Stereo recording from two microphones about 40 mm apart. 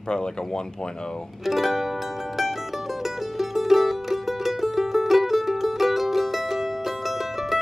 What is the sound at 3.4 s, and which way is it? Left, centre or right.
Music, centre.